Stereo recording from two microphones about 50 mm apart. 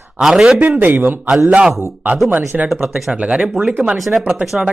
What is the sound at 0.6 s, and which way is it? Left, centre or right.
Speech, right.